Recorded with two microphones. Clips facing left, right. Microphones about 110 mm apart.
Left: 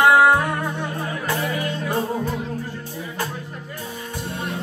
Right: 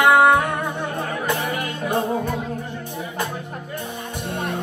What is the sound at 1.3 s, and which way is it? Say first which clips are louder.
Music: left 1 dB; 60° right (ahead or behind).